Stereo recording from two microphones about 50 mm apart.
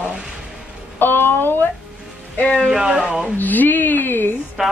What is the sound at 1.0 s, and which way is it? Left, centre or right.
Speech, left.